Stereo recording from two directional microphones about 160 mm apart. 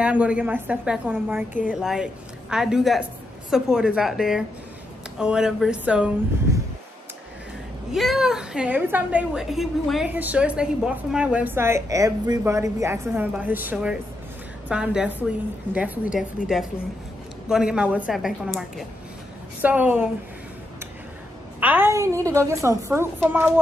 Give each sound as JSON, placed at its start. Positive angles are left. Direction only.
{"t": 0.0, "sound": "a woman's voice", "side_deg": -5}
{"t": 7.9, "sound": "a woman's voice", "side_deg": 0}
{"t": 21.5, "sound": "a woman's voice", "side_deg": -10}